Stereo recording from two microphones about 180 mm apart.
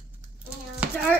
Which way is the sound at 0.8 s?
5° right (ahead or behind).